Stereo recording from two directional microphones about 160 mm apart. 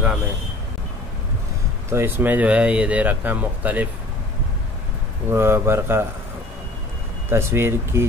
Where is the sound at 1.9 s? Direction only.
15° right (ahead or behind).